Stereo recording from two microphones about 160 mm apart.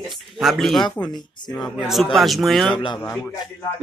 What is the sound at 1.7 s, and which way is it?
Speech, centre (ahead or behind).